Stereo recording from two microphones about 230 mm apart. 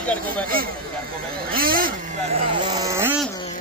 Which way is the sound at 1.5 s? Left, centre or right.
Right.